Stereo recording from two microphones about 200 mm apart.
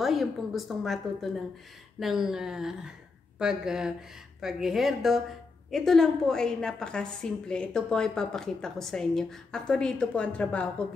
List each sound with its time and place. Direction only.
0.0 s a woman's voice: centre (ahead or behind)